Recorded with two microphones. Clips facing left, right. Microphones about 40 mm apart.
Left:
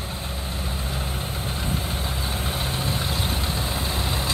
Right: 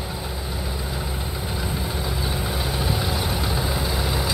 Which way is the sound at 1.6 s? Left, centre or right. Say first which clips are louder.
Right 1 dB; centre.